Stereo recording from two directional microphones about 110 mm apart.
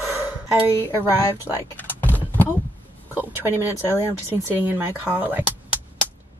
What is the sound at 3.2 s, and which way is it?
Speech, 20° right (ahead or behind).